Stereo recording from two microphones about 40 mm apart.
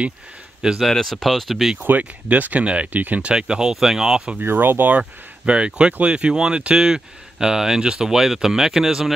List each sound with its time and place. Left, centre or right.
0.6 s speech: centre
1.0 s speech: centre
1.8 s speech: right
2.6 s speech: right
2.9 s speech: right
3.3 s speech: centre
4.4 s speech: right
5.4 s speech: right; by 9.1 s centre